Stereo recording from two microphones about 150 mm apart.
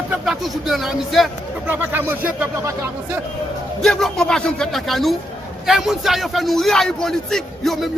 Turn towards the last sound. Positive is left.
turn(degrees=0)  # may be behind; listen again after turning